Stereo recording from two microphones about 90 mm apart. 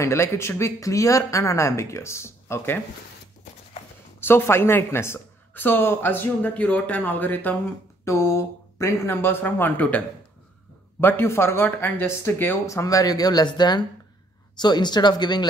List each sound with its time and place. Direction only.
0.0 s speech: 30° left (ahead or behind)
4.2 s speech: 25° left (ahead or behind)
8.0 s speech: 30° left (ahead or behind)
12.6 s speech: 40° left (ahead or behind); by 15.4 s 55° left (ahead or behind)